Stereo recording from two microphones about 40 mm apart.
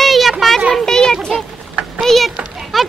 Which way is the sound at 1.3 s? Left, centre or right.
Centre.